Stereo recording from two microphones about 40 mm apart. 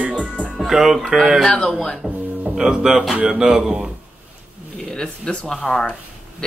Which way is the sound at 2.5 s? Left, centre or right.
Centre.